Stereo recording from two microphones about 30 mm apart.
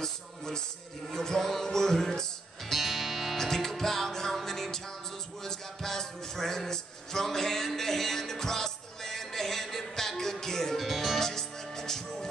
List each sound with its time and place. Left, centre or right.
1.1 s music: centre
2.7 s music: centre
3.3 s music: centre
5.4 s a sound: centre
10.8 s music: centre
11.1 s music: centre